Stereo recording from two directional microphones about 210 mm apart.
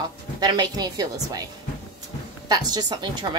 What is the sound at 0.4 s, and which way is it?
A woman's voice, 20° right (ahead or behind).